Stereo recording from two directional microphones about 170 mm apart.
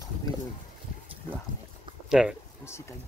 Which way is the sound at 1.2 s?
20° left (ahead or behind).